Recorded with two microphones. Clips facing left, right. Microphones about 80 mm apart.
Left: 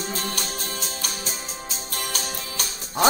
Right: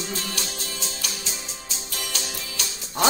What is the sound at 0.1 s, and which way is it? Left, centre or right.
Music, left.